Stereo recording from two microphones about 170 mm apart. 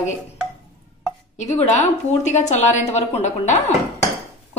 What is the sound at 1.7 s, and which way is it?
A woman's voice, 45° left (ahead or behind).